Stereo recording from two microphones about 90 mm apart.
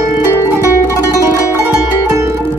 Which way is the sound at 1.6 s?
30° right (ahead or behind).